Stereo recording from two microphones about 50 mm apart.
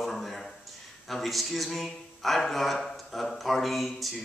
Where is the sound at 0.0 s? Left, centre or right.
Centre.